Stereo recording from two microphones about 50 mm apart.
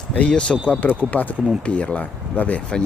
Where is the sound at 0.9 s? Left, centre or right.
Left.